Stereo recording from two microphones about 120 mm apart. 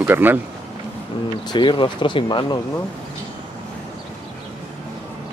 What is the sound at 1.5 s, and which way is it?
Speech, 45° left (ahead or behind).